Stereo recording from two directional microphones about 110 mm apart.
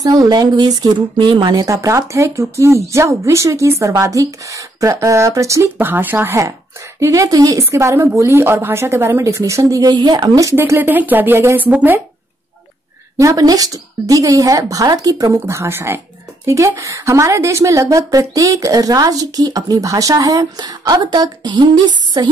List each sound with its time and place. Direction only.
0.0 s a woman's voice: 35° right (ahead or behind)
10.5 s speech: 20° right (ahead or behind)
13.2 s a woman's voice: 30° right (ahead or behind)